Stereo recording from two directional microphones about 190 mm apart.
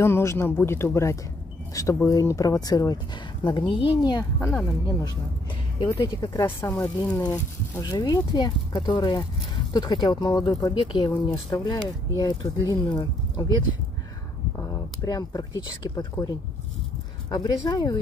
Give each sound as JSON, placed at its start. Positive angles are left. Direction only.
{"t": 0.0, "sound": "speech", "side_deg": 15}
{"t": 14.6, "sound": "a sound", "side_deg": 20}
{"t": 15.9, "sound": "speech", "side_deg": 20}